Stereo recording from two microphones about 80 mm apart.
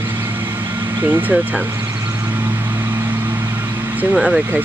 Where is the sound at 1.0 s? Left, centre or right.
Right.